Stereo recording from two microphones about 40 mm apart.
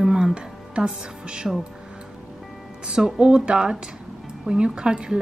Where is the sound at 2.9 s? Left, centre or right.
Right.